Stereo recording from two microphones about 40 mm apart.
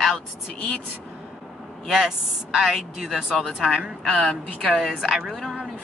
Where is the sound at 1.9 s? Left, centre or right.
Centre.